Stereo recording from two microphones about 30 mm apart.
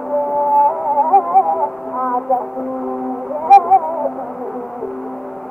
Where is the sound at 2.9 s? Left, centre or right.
Centre.